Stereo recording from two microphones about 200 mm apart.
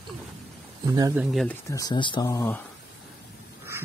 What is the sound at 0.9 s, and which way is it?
Speech, 15° right (ahead or behind).